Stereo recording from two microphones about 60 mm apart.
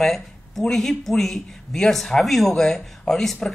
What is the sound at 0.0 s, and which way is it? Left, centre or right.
Speech, centre.